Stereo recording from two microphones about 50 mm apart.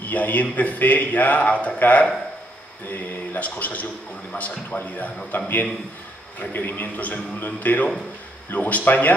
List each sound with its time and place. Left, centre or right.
0.0 s a man's voice: left
6.5 s a man's voice: left